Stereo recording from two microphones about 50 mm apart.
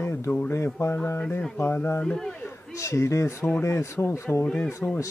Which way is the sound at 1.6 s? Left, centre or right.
Left.